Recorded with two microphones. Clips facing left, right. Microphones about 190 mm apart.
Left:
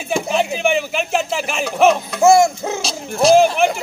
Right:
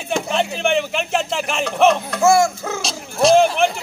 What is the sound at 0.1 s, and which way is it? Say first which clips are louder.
Speech: left 2 dB; 5° left (ahead or behind).